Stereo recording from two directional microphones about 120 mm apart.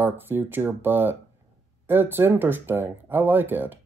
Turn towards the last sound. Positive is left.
turn(degrees=-15)  # may be behind; listen again after turning